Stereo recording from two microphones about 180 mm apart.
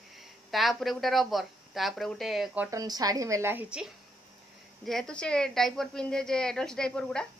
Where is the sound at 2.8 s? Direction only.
20° right (ahead or behind).